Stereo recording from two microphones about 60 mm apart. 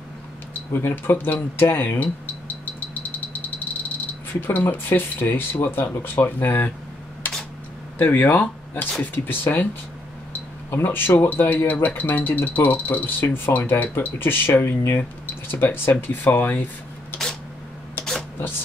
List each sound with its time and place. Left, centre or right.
0.7 s speech: left
4.3 s speech: left
7.2 s a sound: left
8.0 s speech: left
9.0 s speech: left
10.7 s speech: left
17.1 s a sound: left